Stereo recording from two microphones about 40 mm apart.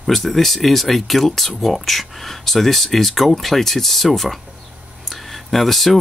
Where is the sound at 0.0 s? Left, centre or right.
Centre.